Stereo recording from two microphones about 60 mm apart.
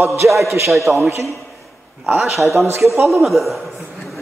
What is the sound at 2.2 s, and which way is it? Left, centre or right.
Speech, centre.